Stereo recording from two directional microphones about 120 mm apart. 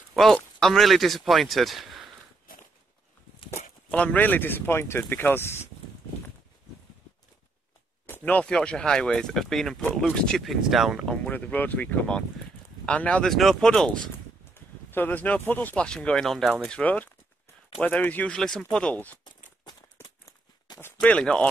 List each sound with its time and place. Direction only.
0.1 s speech: 5° left (ahead or behind)
3.9 s speech: 10° left (ahead or behind)
8.1 s speech: 10° left (ahead or behind)
11.2 s speech: 10° left (ahead or behind)
14.5 s speech: 15° left (ahead or behind)
19.2 s a sound: 35° left (ahead or behind)
21.0 s speech: 10° left (ahead or behind)